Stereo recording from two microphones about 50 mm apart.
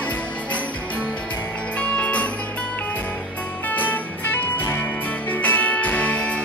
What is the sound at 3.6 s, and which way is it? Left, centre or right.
Music, left.